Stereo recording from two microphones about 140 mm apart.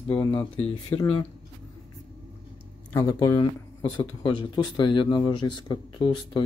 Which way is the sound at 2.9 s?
25° left (ahead or behind).